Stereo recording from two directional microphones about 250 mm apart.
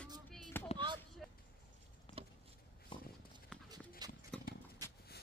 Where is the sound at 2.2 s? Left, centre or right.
Right.